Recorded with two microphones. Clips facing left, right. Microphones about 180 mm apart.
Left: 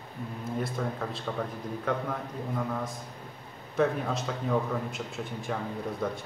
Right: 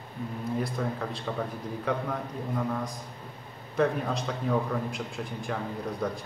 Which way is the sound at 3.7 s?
Centre (ahead or behind).